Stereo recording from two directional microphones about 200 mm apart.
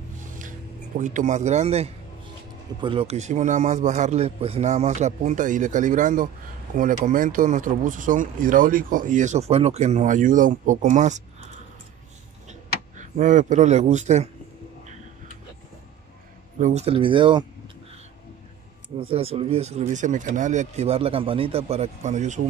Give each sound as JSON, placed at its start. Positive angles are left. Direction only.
{"t": 0.2, "sound": "a sound", "side_deg": -40}
{"t": 2.8, "sound": "a man's voice", "side_deg": -25}
{"t": 12.4, "sound": "speech", "side_deg": -40}
{"t": 16.5, "sound": "speech", "side_deg": -35}
{"t": 18.9, "sound": "a man's voice", "side_deg": -30}